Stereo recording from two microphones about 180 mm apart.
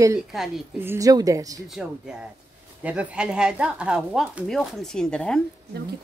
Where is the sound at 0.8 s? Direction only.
15° right (ahead or behind).